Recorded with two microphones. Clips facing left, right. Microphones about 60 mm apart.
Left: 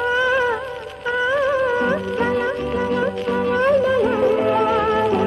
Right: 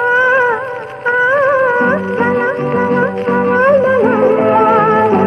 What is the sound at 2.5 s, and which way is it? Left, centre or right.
Music, right.